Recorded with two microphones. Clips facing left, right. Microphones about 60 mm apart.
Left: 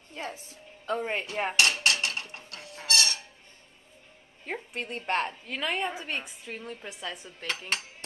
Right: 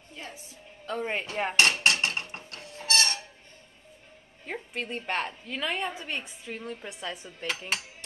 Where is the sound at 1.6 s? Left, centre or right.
Right.